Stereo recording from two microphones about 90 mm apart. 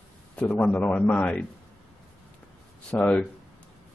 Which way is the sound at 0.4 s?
15° left (ahead or behind).